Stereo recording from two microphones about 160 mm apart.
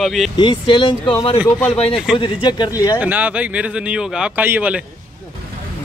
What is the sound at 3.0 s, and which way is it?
Speech, 10° right (ahead or behind).